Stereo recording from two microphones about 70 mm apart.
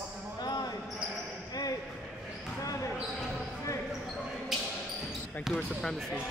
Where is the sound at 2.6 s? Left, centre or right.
Left.